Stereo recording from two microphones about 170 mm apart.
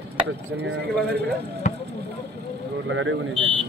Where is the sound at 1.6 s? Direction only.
50° left (ahead or behind).